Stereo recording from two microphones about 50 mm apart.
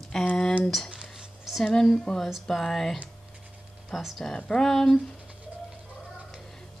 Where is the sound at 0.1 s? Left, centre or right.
Centre.